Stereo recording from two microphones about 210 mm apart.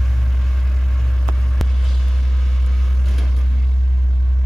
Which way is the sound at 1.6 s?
Centre (ahead or behind).